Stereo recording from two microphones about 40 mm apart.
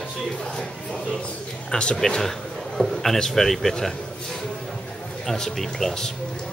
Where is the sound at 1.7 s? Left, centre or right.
Left.